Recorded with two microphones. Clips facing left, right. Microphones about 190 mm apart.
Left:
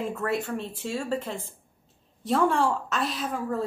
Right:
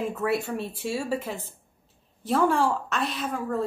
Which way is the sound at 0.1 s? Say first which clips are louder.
Right 2 dB; 10° right (ahead or behind).